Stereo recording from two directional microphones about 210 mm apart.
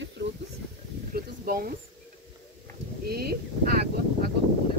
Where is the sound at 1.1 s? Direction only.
45° right (ahead or behind).